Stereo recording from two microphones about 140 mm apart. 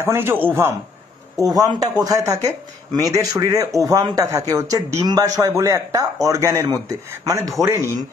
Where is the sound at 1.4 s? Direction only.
25° right (ahead or behind).